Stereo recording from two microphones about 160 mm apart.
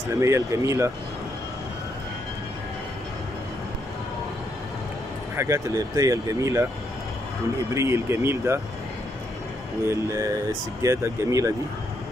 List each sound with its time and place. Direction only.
0.2 s speech: 20° right (ahead or behind)
5.3 s speech: 15° right (ahead or behind)
7.7 s speech: 15° right (ahead or behind)
9.8 s speech: 20° right (ahead or behind)